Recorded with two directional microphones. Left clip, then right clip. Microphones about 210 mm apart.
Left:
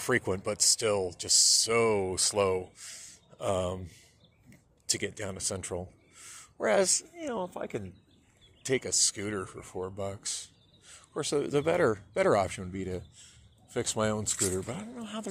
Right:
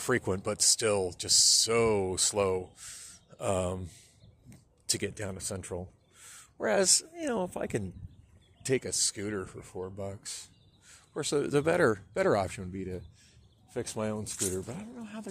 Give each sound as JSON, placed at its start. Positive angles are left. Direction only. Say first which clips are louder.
{"t": 0.0, "sound": "speech", "louder": "left 1 dB", "side_deg": -15}
{"t": 4.5, "sound": "a sound", "louder": "left 1 dB", "side_deg": -20}
{"t": 7.0, "sound": "speech", "louder": "right 2 dB", "side_deg": -35}
{"t": 8.6, "sound": "speech", "louder": "left 1 dB", "side_deg": -15}